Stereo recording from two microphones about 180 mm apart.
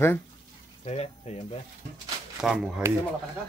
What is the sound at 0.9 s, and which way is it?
Speech, 35° left (ahead or behind).